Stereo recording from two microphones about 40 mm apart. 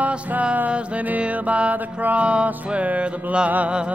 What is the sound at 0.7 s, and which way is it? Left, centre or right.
Music, right.